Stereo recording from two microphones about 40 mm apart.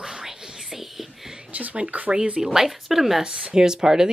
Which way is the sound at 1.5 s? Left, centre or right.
Right.